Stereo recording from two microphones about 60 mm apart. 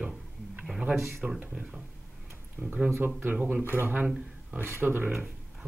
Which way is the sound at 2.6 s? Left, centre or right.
Centre.